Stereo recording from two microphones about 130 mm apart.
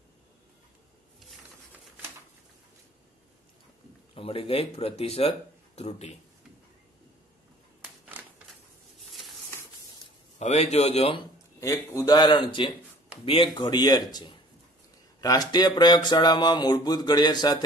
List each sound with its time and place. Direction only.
4.1 s speech: 45° left (ahead or behind)
8.0 s a sound: 5° right (ahead or behind)
10.4 s speech: 55° left (ahead or behind)
11.6 s speech: 25° left (ahead or behind); by 13.5 s 45° left (ahead or behind)
13.6 s speech: 30° left (ahead or behind)